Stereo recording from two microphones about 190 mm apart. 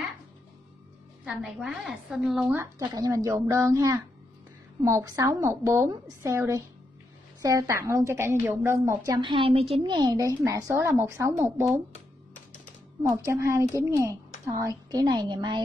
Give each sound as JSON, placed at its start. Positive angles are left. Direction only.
{"t": 1.2, "sound": "a woman's voice", "side_deg": -5}
{"t": 2.5, "sound": "a woman's voice", "side_deg": -15}
{"t": 13.1, "sound": "a woman's voice", "side_deg": -15}